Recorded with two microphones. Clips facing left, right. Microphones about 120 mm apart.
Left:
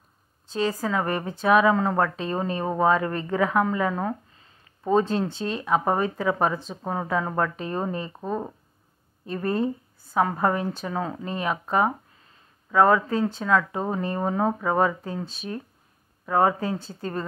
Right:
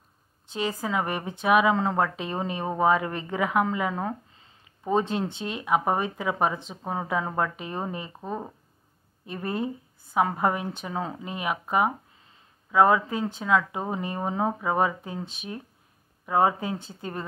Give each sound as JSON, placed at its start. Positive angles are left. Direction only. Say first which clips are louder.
{"t": 0.5, "sound": "speech", "louder": "left 3 dB", "side_deg": -20}
{"t": 9.2, "sound": "speech", "louder": "left 5 dB", "side_deg": -15}